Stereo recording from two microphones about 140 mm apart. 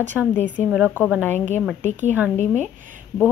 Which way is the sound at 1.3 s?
55° right (ahead or behind).